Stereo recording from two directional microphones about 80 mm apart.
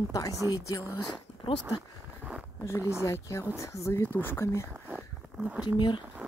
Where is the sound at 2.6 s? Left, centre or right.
Left.